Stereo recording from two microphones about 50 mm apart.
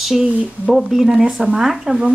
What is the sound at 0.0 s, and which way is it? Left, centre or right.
Speech, centre.